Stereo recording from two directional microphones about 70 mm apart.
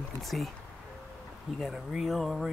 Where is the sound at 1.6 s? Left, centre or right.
Centre.